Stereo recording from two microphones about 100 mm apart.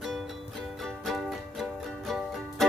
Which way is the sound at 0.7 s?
Centre (ahead or behind).